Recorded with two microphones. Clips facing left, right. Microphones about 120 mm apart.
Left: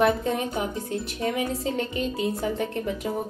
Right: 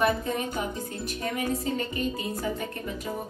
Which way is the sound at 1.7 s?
80° left.